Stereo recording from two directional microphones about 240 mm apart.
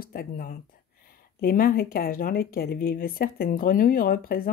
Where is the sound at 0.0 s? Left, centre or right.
Left.